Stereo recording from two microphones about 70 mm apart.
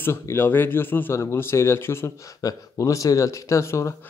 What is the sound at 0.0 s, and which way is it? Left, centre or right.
Speech, left.